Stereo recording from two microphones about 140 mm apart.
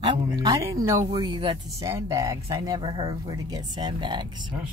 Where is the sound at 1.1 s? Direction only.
35° right (ahead or behind).